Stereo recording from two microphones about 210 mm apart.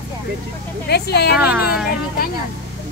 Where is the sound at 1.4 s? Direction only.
5° right (ahead or behind).